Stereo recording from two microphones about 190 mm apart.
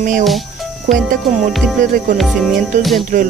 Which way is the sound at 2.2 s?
Centre (ahead or behind).